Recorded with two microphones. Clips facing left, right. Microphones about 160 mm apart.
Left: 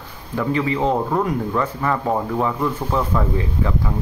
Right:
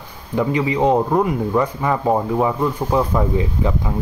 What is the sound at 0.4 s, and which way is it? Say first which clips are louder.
Speech: right 2 dB; 15° right (ahead or behind).